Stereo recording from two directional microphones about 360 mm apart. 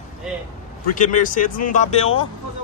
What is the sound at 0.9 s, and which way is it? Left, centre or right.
A man's voice, left.